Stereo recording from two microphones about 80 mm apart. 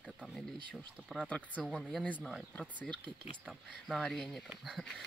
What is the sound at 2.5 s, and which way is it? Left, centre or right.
Speech, centre.